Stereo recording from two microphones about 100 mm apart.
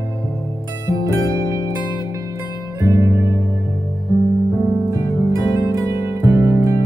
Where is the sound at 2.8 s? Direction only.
30° right (ahead or behind).